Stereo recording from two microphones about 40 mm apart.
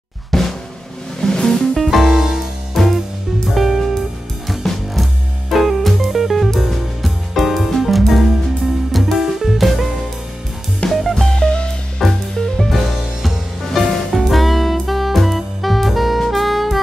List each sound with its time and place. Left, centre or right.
0.3 s drum: centre
1.2 s music: centre
1.8 s music: centre
2.8 s music: centre
10.9 s music: centre
11.3 s music: left
12.0 s music: centre
14.2 s saxophone: centre